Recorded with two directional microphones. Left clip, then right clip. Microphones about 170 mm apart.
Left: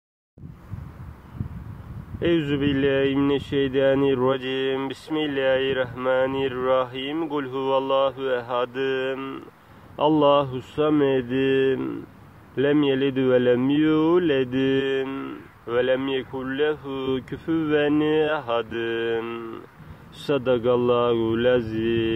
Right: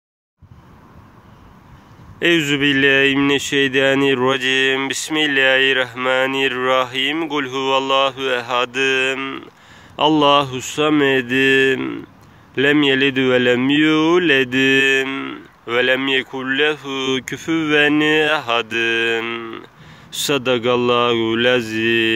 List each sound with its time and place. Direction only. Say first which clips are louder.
2.1 s speech: right 7 dB; 15° right (ahead or behind)